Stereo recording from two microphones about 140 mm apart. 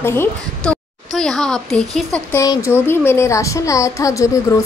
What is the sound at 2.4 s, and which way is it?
Speech, 20° left (ahead or behind).